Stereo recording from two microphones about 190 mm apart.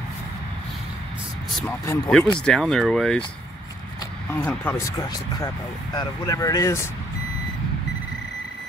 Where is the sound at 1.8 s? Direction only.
20° left (ahead or behind).